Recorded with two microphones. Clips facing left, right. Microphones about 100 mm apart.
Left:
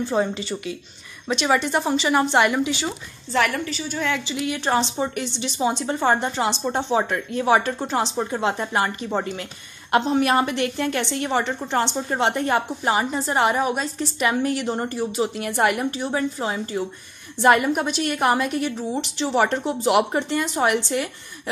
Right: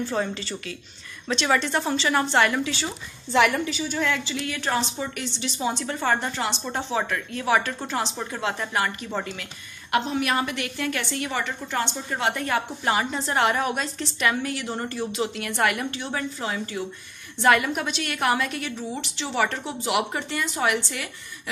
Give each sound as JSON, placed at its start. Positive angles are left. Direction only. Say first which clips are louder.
{"t": 0.0, "sound": "speech", "louder": "left 4 dB", "side_deg": 15}
{"t": 3.3, "sound": "a woman's voice", "louder": "right 1 dB", "side_deg": -10}
{"t": 3.9, "sound": "a woman's voice", "louder": "left 2 dB", "side_deg": 5}
{"t": 4.3, "sound": "a woman's voice", "louder": "left 4 dB", "side_deg": 20}
{"t": 12.9, "sound": "a woman's voice", "louder": "left 2 dB", "side_deg": 5}
{"t": 14.2, "sound": "a woman's voice", "louder": "left 4 dB", "side_deg": 20}
{"t": 18.8, "sound": "a woman's voice", "louder": "left 6 dB", "side_deg": 15}
{"t": 19.9, "sound": "speech", "louder": "left 6 dB", "side_deg": 40}